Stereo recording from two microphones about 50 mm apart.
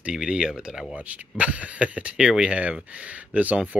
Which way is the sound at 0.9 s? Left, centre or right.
Right.